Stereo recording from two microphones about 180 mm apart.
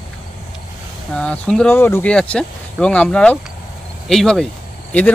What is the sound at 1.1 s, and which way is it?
Speech, 5° left (ahead or behind).